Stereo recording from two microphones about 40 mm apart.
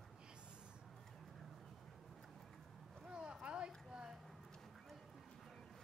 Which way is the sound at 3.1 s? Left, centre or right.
Right.